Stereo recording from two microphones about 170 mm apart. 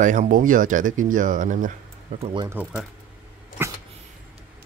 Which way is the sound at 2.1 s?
30° right (ahead or behind).